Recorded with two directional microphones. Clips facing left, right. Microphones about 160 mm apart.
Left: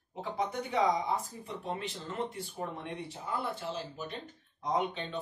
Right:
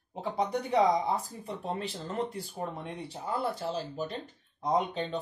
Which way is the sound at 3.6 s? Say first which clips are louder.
Right 5 dB; 35° right (ahead or behind).